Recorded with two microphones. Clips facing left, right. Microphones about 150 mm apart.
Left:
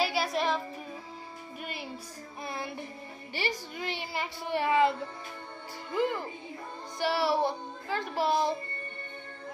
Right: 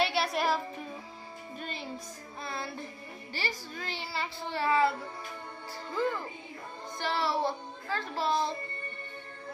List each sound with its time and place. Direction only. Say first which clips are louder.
0.0 s music: even; centre (ahead or behind)
1.6 s music: even; 10° left (ahead or behind)
2.4 s speech: left 1 dB; 15° left (ahead or behind)
7.0 s speech: left 3 dB; 10° left (ahead or behind)